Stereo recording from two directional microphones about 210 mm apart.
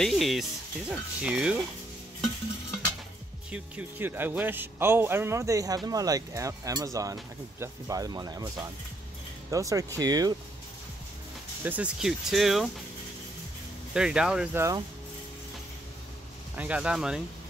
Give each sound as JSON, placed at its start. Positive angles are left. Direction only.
{"t": 0.0, "sound": "speech", "side_deg": 0}
{"t": 3.5, "sound": "speech", "side_deg": -10}
{"t": 11.6, "sound": "speech", "side_deg": -5}
{"t": 13.9, "sound": "speech", "side_deg": -5}
{"t": 16.5, "sound": "speech", "side_deg": -5}